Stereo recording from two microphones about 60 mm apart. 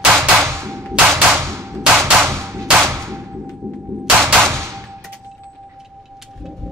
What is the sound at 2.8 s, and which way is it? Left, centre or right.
Whip, right.